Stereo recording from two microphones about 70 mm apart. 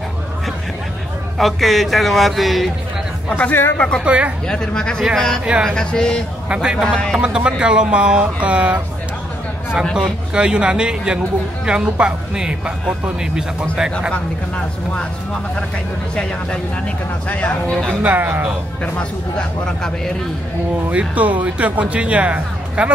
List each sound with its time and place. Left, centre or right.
1.4 s a man's voice: centre
3.3 s speech: centre
4.0 s speech: centre
4.5 s a man's voice: centre
6.5 s speech: centre
9.9 s speech: centre
16.2 s speech: centre
18.0 s speech: right
18.9 s speech: centre
20.9 s speech: centre